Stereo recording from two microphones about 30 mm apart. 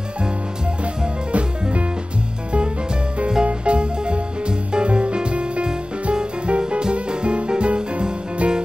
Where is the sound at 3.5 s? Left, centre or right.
Right.